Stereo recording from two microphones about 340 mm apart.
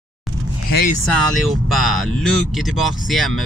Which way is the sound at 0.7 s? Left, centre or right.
Left.